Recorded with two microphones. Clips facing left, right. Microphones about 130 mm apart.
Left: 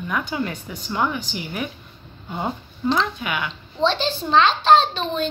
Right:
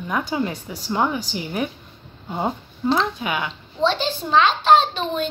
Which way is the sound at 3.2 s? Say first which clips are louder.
Right 2 dB; 30° right (ahead or behind).